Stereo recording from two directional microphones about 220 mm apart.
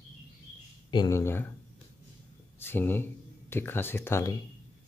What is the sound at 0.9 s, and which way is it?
Speech, 15° left (ahead or behind).